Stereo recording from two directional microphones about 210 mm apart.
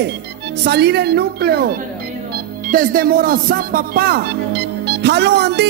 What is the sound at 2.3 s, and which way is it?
Speech, 40° right (ahead or behind).